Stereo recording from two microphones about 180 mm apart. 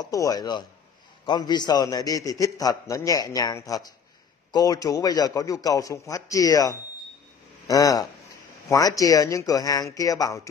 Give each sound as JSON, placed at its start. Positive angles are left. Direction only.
{"t": 0.0, "sound": "a man's voice", "side_deg": 20}